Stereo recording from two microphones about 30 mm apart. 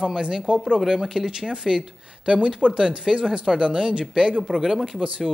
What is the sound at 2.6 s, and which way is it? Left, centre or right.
Speech, left.